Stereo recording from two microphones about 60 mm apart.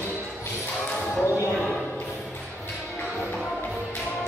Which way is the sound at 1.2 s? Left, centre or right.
Left.